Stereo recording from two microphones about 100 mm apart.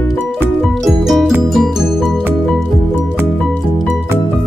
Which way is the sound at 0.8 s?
Centre (ahead or behind).